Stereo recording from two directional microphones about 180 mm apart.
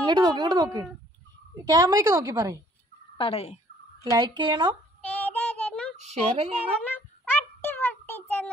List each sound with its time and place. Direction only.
0.0 s a woman's voice: 25° right (ahead or behind)
3.2 s speech: 35° left (ahead or behind)
4.0 s speech: 25° right (ahead or behind)
5.1 s synthetic singing: 10° left (ahead or behind)
5.9 s a woman's voice: 35° right (ahead or behind)
6.8 s child singing: 10° left (ahead or behind)